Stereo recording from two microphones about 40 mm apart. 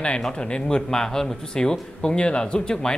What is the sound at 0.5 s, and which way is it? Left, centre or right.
A man's voice, left.